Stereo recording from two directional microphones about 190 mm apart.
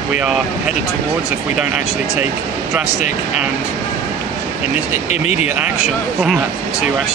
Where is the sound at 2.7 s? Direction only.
Centre (ahead or behind).